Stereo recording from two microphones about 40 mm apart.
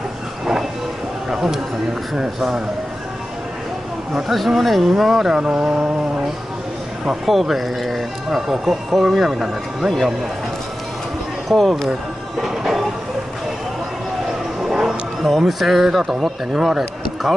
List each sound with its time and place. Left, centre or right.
1.3 s speech: centre
4.3 s speech: centre
5.3 s mantra: centre
7.2 s speech: centre
11.4 s speech: centre
12.4 s music: centre
14.6 s a sound: centre
15.2 s speech: centre